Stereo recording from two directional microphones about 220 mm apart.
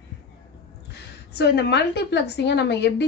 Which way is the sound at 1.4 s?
50° left (ahead or behind).